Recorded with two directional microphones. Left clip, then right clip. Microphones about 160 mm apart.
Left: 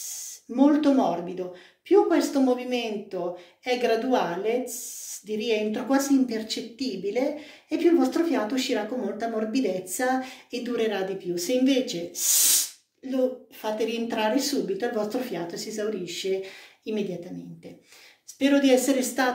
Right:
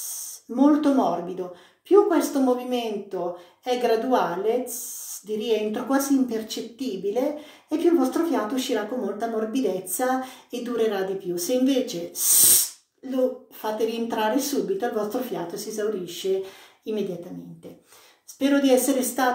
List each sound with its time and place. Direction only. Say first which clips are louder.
0.0 s a sound: right 1 dB; 15° left (ahead or behind)
0.8 s a woman's voice: right 1 dB; 10° left (ahead or behind)
18.4 s a woman's voice: right 1 dB; 15° left (ahead or behind)